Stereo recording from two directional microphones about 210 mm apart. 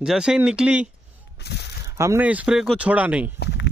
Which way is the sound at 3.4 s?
55° left (ahead or behind).